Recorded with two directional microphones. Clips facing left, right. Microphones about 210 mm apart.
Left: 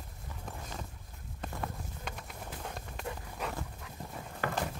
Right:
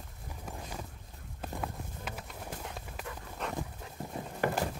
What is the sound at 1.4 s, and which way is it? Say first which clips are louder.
Clip-clop: right 1 dB; 5° right (ahead or behind).